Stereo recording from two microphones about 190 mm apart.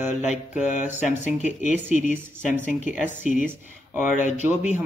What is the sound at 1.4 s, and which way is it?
Speech, 40° left (ahead or behind).